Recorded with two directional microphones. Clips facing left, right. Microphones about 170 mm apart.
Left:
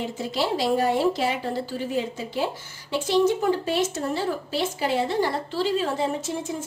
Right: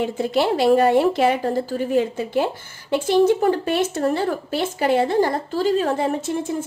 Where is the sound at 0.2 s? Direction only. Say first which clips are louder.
Right 6 dB; 55° right (ahead or behind).